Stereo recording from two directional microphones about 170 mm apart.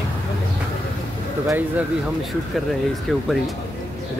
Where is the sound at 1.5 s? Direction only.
10° right (ahead or behind).